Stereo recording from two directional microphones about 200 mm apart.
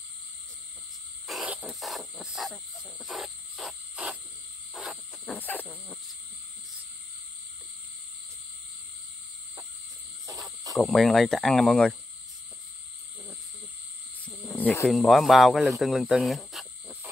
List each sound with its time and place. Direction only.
1.2 s a sound: 5° right (ahead or behind)
4.7 s owl: centre (ahead or behind)
10.2 s cricket: 15° right (ahead or behind)
10.8 s speech: centre (ahead or behind)
14.2 s speech: 5° left (ahead or behind)
15.8 s insect: centre (ahead or behind)